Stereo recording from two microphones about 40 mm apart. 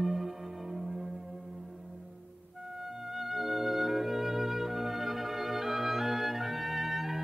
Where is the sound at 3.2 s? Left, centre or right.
Centre.